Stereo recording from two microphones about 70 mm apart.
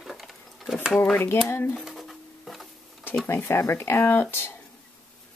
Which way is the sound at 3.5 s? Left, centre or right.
Left.